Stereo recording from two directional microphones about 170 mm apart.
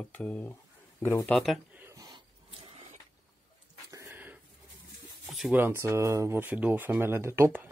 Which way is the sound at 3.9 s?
15° right (ahead or behind).